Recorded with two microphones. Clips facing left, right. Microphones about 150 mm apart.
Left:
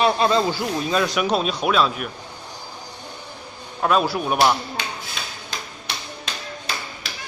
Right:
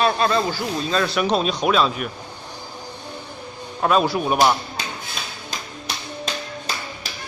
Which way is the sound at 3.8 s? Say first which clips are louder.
Right 1 dB; centre (ahead or behind).